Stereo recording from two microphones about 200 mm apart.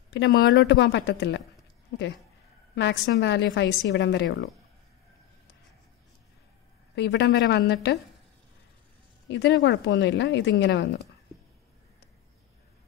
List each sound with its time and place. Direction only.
0.1 s speech: 55° left (ahead or behind)
0.6 s a woman's voice: 60° left (ahead or behind)
2.7 s a woman's voice: 60° left (ahead or behind)
7.0 s a woman's voice: 60° left (ahead or behind)
9.3 s a woman's voice: 65° left (ahead or behind)